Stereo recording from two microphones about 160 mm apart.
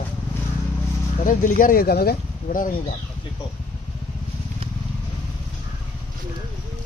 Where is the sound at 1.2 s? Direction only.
55° left (ahead or behind).